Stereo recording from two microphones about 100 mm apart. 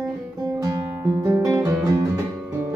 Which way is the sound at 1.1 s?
30° right (ahead or behind).